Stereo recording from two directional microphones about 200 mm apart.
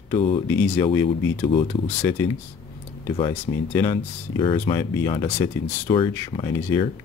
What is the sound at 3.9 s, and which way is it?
Speech, 25° left (ahead or behind).